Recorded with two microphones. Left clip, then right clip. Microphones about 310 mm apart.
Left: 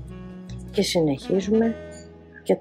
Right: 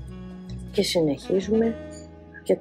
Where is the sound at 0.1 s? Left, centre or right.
Centre.